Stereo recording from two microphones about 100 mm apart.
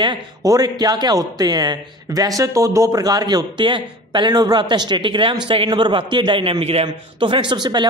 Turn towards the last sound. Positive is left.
turn(degrees=-45)  # may be behind; listen again after turning